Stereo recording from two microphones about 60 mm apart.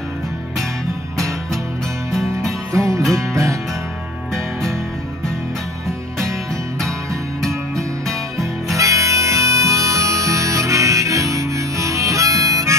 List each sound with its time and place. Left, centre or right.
2.7 s music: right
4.3 s music: centre
8.7 s harmonica: right